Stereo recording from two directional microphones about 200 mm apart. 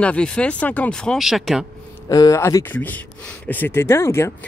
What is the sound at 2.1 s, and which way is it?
Speech, 15° left (ahead or behind).